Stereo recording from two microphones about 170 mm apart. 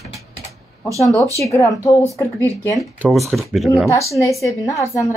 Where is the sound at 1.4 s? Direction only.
20° left (ahead or behind).